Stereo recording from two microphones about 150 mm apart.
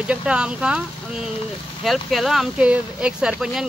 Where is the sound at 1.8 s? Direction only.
Centre (ahead or behind).